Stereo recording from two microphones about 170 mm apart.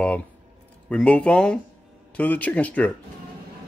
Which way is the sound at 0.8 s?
5° left (ahead or behind).